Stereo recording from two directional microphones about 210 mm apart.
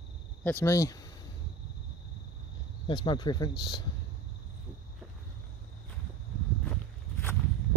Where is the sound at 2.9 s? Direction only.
20° left (ahead or behind).